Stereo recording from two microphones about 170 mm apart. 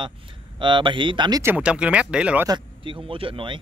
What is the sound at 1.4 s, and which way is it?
Speech, 10° right (ahead or behind).